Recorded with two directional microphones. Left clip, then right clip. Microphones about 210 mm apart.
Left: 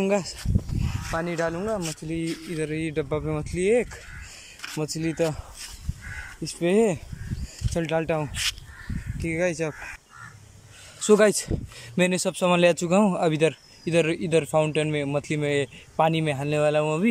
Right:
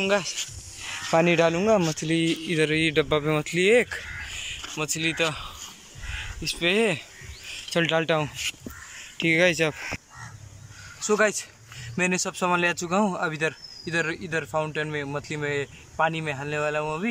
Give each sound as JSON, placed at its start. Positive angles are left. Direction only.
{"t": 0.0, "sound": "speech", "side_deg": 20}
{"t": 1.1, "sound": "speech", "side_deg": -5}
{"t": 4.8, "sound": "speech", "side_deg": 25}
{"t": 6.4, "sound": "speech", "side_deg": 25}
{"t": 7.7, "sound": "speech", "side_deg": 10}
{"t": 11.0, "sound": "speech", "side_deg": 20}